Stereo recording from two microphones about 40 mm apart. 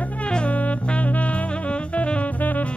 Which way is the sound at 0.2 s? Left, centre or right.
Left.